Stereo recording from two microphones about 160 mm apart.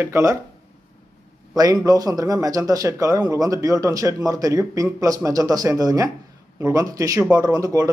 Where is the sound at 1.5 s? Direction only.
25° right (ahead or behind).